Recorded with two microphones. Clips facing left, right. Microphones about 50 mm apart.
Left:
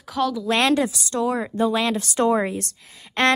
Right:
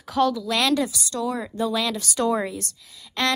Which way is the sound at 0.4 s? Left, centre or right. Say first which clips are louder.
Left 3 dB; left.